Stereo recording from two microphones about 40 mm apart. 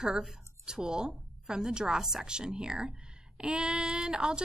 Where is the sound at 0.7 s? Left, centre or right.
Centre.